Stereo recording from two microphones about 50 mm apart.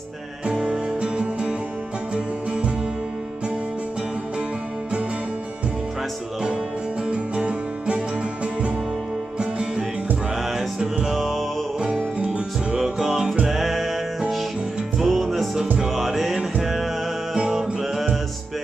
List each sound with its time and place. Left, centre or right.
0.5 s music: centre
7.1 s music: centre
9.4 s music: centre
11.1 s music: centre
11.8 s music: centre
15.0 s music: centre
17.5 s music: centre